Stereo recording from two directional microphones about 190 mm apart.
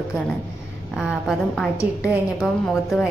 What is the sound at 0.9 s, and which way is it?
A woman's voice, 5° right (ahead or behind).